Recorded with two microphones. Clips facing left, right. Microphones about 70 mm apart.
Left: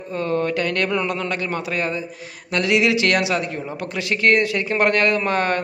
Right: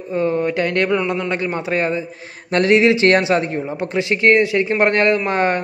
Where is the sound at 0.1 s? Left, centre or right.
Centre.